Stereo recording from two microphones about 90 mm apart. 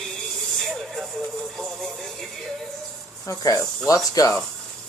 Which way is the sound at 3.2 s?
35° left (ahead or behind).